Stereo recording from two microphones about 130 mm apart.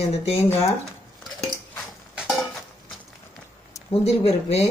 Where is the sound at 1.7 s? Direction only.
5° right (ahead or behind).